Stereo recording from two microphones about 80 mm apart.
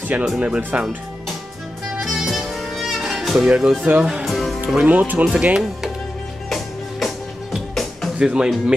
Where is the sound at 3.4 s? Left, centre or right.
Centre.